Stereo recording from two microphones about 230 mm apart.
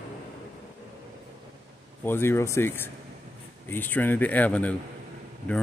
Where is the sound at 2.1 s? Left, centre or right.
Centre.